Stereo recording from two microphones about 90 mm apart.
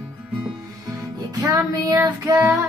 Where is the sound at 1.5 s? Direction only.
30° right (ahead or behind).